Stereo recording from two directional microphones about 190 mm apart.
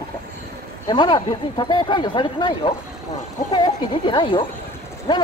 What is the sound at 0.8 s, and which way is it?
Speech, 25° left (ahead or behind).